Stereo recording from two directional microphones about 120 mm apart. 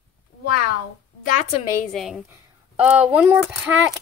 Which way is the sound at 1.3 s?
90° left.